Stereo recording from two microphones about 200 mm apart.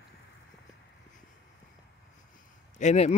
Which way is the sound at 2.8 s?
35° left (ahead or behind).